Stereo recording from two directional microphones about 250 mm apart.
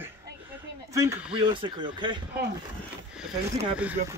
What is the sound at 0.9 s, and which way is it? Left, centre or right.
Speech, centre.